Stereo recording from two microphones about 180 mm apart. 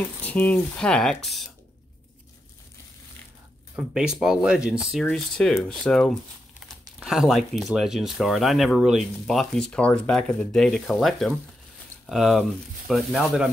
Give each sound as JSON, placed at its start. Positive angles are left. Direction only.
{"t": 0.2, "sound": "speech", "side_deg": 10}
{"t": 3.7, "sound": "speech", "side_deg": -5}